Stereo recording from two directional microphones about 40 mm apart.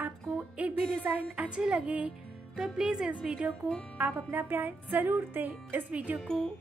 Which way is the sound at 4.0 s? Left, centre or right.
Right.